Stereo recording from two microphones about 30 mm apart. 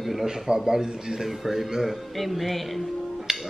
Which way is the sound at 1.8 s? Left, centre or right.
Centre.